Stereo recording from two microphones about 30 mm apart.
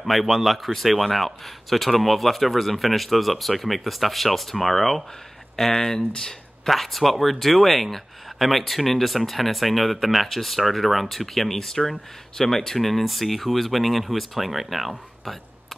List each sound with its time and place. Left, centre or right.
0.0 s speech: centre
5.7 s speech: centre
6.7 s speech: centre